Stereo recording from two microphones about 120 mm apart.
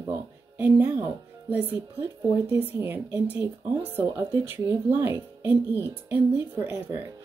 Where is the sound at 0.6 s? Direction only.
15° right (ahead or behind).